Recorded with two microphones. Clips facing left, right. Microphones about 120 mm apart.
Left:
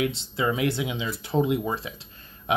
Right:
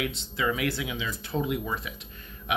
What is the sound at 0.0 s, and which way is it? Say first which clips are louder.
Speech: left 4 dB; 30° left (ahead or behind).